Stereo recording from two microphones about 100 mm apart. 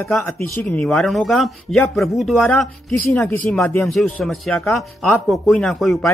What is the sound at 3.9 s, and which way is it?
Speech, centre (ahead or behind).